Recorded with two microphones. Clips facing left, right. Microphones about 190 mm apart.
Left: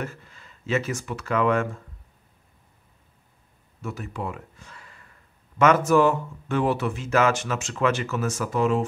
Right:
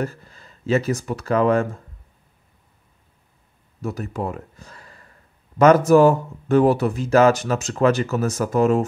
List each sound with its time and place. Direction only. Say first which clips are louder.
0.0 s speech: right 7 dB; 35° right (ahead or behind)
3.8 s speech: right 5 dB; 40° right (ahead or behind)